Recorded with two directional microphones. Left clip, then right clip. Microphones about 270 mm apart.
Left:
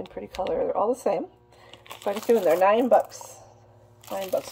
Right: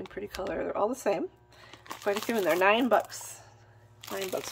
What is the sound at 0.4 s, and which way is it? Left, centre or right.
Speech, right.